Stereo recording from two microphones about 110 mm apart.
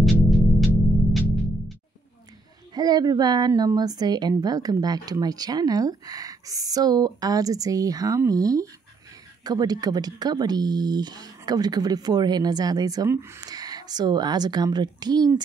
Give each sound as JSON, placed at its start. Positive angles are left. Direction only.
{"t": 0.0, "sound": "music", "side_deg": 0}
{"t": 2.7, "sound": "a woman's voice", "side_deg": -35}
{"t": 13.1, "sound": "speech", "side_deg": -20}
{"t": 13.4, "sound": "a woman's voice", "side_deg": -35}